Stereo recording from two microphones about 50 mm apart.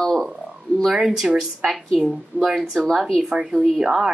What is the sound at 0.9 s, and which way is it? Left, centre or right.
A woman's voice, centre.